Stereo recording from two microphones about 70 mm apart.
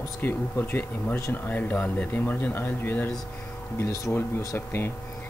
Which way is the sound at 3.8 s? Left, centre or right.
Left.